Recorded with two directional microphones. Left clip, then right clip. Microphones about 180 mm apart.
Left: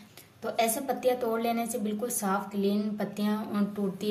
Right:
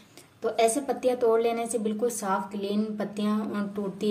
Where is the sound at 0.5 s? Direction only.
55° right (ahead or behind).